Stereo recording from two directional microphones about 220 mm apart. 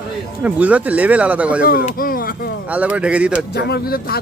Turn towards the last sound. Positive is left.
turn(degrees=45)  # may be behind; listen again after turning